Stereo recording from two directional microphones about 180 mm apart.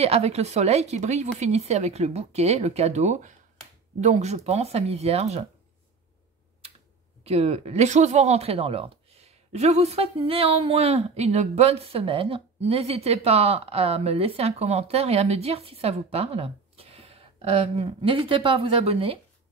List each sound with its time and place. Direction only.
0.0 s speech: 35° right (ahead or behind)
7.2 s speech: 35° right (ahead or behind)